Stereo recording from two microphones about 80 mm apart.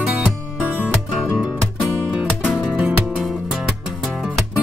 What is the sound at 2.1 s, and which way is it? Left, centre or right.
Music, centre.